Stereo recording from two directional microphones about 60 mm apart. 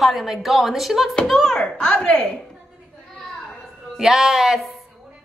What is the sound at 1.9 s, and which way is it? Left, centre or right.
Speech, left.